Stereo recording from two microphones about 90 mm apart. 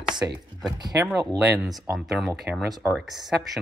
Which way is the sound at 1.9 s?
5° right (ahead or behind).